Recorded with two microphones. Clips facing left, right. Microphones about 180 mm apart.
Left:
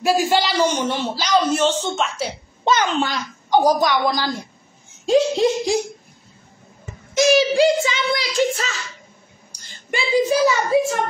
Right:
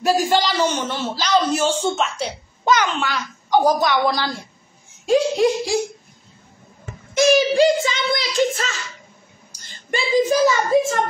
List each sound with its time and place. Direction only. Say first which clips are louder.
0.0 s a man's voice: even; 10° left (ahead or behind)
1.5 s speech: even; 10° right (ahead or behind)
2.6 s a child's voice: even; 30° left (ahead or behind)
3.5 s speech: even; 15° left (ahead or behind)
7.5 s speech: even; 5° left (ahead or behind)
10.1 s speech: even; 5° left (ahead or behind)